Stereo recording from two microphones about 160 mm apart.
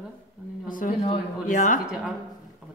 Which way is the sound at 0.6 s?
55° left (ahead or behind).